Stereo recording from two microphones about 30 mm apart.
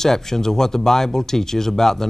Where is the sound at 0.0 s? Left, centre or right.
Centre.